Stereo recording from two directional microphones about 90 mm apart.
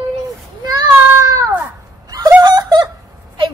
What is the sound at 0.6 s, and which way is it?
Child singing, 50° right (ahead or behind).